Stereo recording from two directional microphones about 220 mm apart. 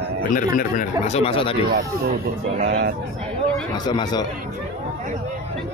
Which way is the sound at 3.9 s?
20° left (ahead or behind).